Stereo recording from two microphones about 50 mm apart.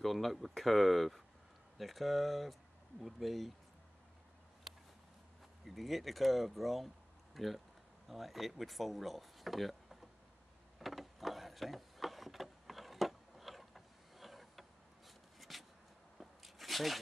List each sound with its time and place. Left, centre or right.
0.0 s speech: centre
5.7 s speech: centre
10.8 s a sound: centre